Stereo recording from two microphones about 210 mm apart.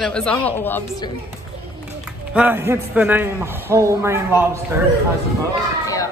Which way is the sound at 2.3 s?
10° right (ahead or behind).